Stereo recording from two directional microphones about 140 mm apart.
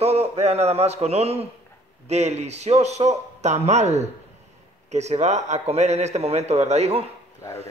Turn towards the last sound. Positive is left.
turn(degrees=-50)  # may be behind; listen again after turning